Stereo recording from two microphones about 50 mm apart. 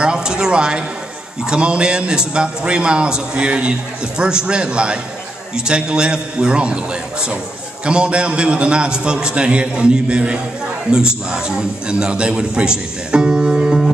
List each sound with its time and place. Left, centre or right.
0.0 s a man's voice: centre